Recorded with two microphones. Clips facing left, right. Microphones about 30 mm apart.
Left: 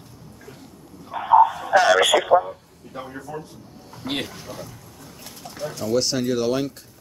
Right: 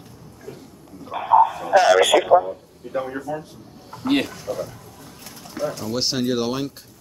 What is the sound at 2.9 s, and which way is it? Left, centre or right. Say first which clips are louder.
Speech: right 8 dB; right.